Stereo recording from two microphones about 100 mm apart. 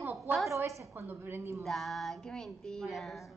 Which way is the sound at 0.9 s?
20° right (ahead or behind).